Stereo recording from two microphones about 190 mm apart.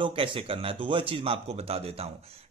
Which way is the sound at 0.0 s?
25° right (ahead or behind).